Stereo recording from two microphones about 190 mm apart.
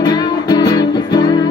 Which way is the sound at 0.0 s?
20° left (ahead or behind).